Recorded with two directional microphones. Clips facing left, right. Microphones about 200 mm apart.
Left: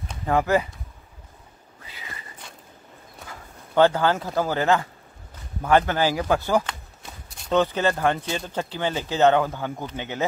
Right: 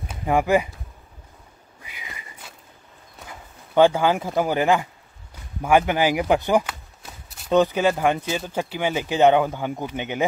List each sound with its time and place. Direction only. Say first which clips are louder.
0.1 s speech: right 2 dB; 15° right (ahead or behind)
1.8 s a sound: even; 15° right (ahead or behind)
3.3 s speech: right 1 dB; 15° right (ahead or behind)
6.7 s speech: even; 5° right (ahead or behind)